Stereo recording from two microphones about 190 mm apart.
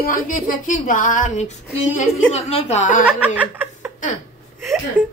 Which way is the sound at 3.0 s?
10° right (ahead or behind).